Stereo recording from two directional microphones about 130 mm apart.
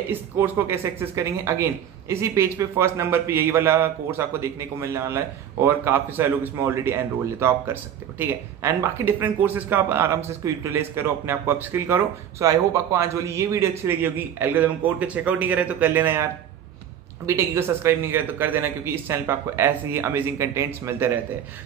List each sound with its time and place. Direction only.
0.1 s speech: 20° right (ahead or behind)
17.3 s a man's voice: 20° right (ahead or behind)